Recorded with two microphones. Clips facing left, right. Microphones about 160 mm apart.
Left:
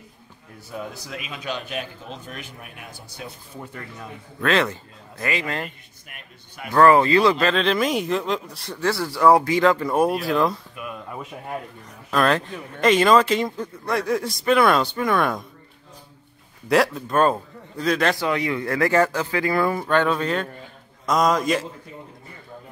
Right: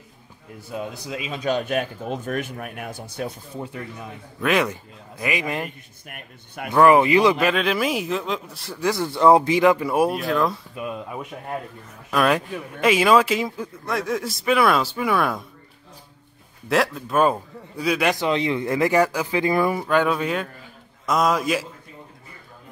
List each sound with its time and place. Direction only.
0.7 s speech: 20° right (ahead or behind)
1.3 s a man's voice: 40° right (ahead or behind)
4.4 s speech: 10° right (ahead or behind)
6.0 s speech: 55° right (ahead or behind)
6.7 s speech: 15° right (ahead or behind)
8.8 s speech: 20° right (ahead or behind)
10.1 s speech: centre (ahead or behind)
12.1 s speech: 10° right (ahead or behind)
16.6 s speech: centre (ahead or behind)
18.1 s speech: 20° right (ahead or behind); by 21.6 s 5° right (ahead or behind)